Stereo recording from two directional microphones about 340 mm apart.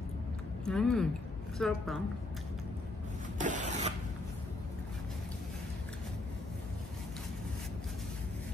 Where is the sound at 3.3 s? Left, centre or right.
Right.